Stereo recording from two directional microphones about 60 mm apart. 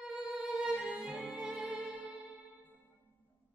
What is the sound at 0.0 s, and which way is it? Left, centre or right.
Music, centre.